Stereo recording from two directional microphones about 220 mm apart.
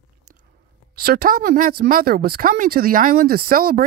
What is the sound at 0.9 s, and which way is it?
Speech, 45° right (ahead or behind).